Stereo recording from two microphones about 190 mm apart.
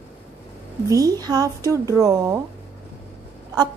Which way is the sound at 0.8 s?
20° right (ahead or behind).